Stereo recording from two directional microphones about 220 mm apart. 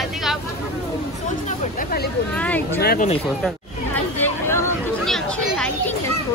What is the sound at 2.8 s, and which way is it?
Speech, 45° left (ahead or behind).